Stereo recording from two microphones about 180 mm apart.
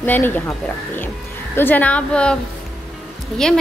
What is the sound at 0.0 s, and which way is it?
Speech, 10° left (ahead or behind).